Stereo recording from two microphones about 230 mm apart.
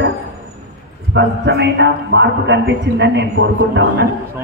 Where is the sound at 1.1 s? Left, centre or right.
Right.